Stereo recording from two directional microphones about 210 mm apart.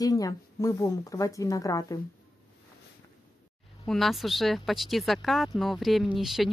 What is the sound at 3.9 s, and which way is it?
Speech, centre (ahead or behind).